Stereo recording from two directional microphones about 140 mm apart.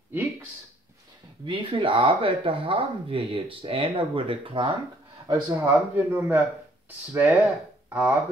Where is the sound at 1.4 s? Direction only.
35° right (ahead or behind).